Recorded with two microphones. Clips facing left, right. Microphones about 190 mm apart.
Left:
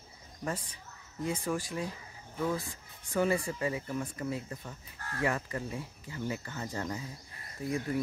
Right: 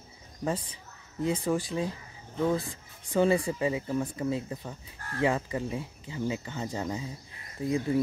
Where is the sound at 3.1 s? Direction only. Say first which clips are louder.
Right 5 dB; 20° right (ahead or behind).